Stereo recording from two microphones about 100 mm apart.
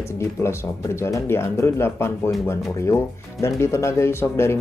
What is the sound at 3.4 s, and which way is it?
Speech, 30° left (ahead or behind).